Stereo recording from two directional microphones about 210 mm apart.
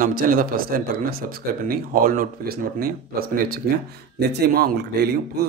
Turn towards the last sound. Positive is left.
turn(degrees=-45)  # may be behind; listen again after turning